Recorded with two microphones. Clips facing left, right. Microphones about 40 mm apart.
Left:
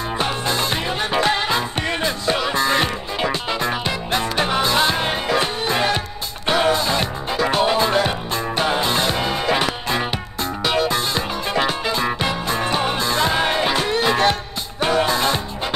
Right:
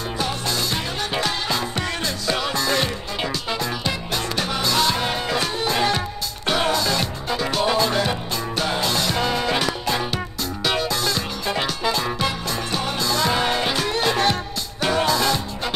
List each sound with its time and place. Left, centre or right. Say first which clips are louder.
0.2 s music: left 3 dB; left